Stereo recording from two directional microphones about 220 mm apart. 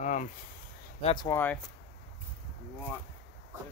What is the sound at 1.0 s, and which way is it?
Speech, 20° left (ahead or behind).